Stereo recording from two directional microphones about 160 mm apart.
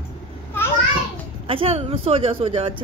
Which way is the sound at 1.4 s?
35° right (ahead or behind).